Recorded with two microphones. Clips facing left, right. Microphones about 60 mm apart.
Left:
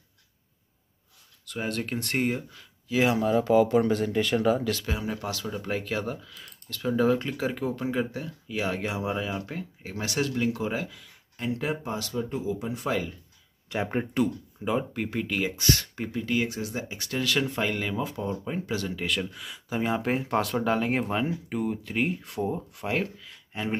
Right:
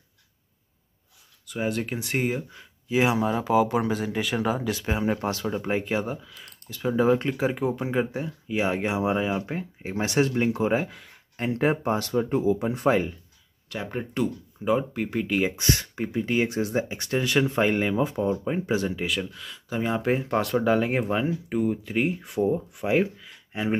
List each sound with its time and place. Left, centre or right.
1.4 s speech: centre
2.5 s speech: centre
4.8 s speech: right
10.9 s speech: right
13.7 s speech: left
14.1 s speech: centre
15.4 s speech: right
19.0 s speech: centre